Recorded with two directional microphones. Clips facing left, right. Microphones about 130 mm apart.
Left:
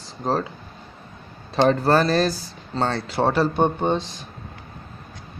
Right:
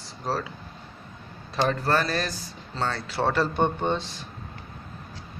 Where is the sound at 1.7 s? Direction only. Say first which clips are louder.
Left 7 dB; 30° left (ahead or behind).